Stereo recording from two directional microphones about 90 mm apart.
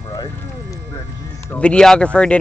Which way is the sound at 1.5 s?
10° left (ahead or behind).